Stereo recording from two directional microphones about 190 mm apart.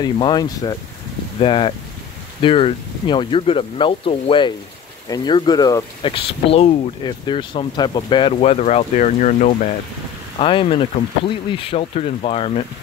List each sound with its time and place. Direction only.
0.0 s speech: 20° left (ahead or behind); by 9.7 s 40° left (ahead or behind)
10.4 s speech: 30° left (ahead or behind)